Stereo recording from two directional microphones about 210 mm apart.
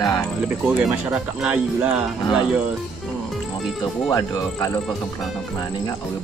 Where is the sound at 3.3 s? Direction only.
Centre (ahead or behind).